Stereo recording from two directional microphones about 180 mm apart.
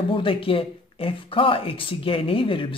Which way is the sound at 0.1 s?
30° left (ahead or behind).